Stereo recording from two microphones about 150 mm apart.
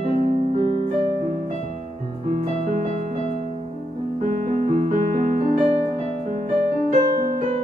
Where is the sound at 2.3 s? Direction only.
55° right (ahead or behind).